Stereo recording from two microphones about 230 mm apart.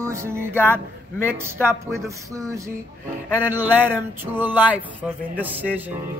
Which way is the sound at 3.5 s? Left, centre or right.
Centre.